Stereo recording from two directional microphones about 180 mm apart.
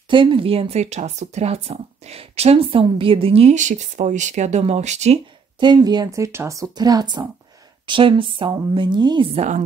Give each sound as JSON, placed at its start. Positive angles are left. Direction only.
{"t": 0.1, "sound": "speech", "side_deg": -25}
{"t": 5.6, "sound": "speech", "side_deg": -25}